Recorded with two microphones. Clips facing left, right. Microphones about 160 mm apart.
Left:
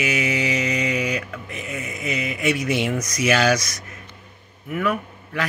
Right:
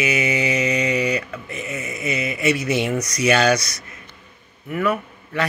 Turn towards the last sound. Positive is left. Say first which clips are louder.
# right 3 dB
turn(degrees=0)  # may be behind; listen again after turning